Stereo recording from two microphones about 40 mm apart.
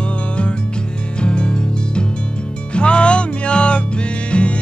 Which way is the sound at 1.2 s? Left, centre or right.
Left.